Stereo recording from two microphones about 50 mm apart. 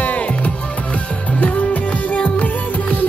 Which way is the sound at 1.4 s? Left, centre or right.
Left.